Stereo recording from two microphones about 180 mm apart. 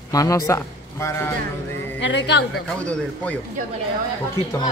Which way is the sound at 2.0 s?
80° left.